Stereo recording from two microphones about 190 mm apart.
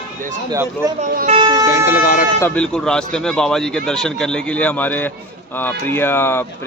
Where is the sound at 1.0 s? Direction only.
40° right (ahead or behind).